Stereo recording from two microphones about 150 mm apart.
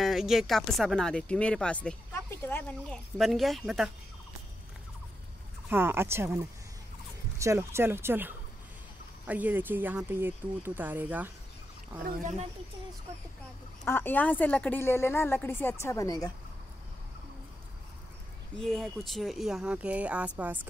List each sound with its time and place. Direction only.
0.0 s speech: centre (ahead or behind)
3.2 s speech: centre (ahead or behind)
5.7 s speech: 15° right (ahead or behind)
12.0 s speech: 60° right (ahead or behind)
13.8 s a woman's voice: 15° left (ahead or behind)
18.6 s speech: centre (ahead or behind)